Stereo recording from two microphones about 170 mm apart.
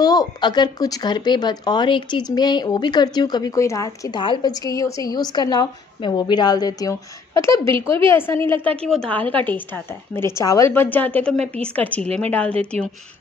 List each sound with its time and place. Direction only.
0.0 s a woman's voice: 25° left (ahead or behind)